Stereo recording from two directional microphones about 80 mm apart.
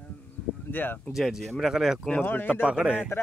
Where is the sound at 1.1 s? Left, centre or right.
Centre.